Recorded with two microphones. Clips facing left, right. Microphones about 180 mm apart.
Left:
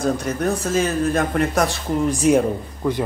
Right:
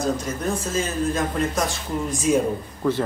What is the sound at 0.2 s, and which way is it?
Speech, 65° left (ahead or behind).